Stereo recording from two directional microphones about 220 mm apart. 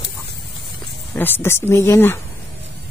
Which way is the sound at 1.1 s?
10° left (ahead or behind).